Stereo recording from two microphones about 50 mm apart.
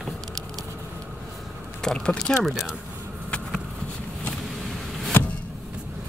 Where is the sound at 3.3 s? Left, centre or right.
Left.